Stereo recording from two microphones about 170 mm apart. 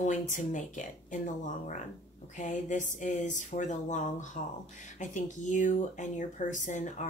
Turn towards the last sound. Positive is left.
turn(degrees=45)  # may be behind; listen again after turning